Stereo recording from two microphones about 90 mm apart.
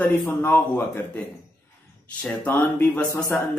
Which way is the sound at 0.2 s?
25° left (ahead or behind).